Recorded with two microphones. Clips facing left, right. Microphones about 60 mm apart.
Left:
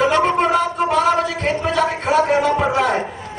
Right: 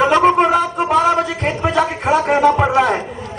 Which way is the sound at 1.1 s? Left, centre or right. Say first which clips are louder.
Right 1 dB; right.